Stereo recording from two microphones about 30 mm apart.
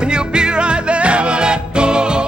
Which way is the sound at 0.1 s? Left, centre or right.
Right.